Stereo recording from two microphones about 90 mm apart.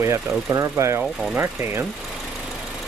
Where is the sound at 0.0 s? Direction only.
35° right (ahead or behind).